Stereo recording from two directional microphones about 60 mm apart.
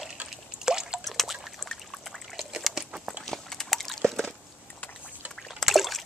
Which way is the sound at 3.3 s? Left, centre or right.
Centre.